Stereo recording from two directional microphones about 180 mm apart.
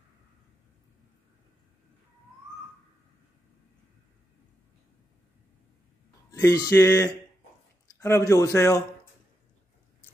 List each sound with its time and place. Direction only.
6.3 s speech: 20° left (ahead or behind)